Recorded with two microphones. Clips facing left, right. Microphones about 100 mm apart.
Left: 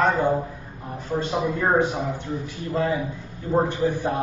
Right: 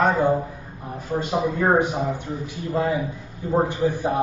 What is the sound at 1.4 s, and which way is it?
A man's voice, 15° right (ahead or behind).